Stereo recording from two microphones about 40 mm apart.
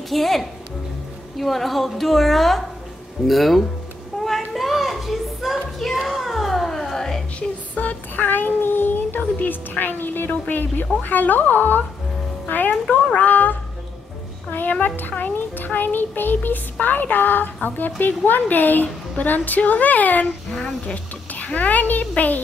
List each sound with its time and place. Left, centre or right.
0.1 s a woman's voice: centre
4.2 s a sound: centre
6.0 s music: centre
7.3 s child singing: left
10.5 s a woman's voice: left
20.4 s speech: centre
20.9 s a child's voice: left